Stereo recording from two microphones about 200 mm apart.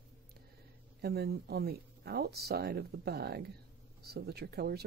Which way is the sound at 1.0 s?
55° right (ahead or behind).